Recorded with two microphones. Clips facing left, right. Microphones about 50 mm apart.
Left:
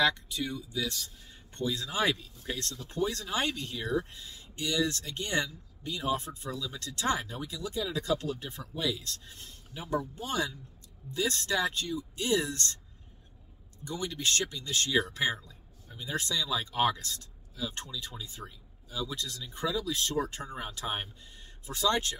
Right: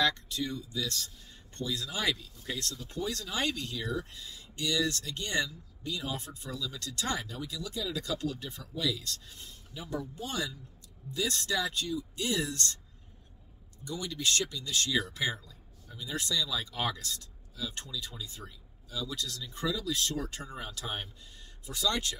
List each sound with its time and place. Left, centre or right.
0.0 s speech: centre
1.6 s speech: left
13.8 s speech: left